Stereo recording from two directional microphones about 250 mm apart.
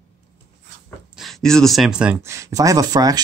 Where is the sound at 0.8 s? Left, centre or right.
Centre.